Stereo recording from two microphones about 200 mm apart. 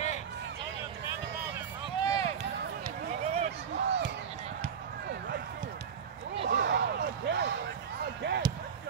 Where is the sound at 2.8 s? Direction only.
35° right (ahead or behind).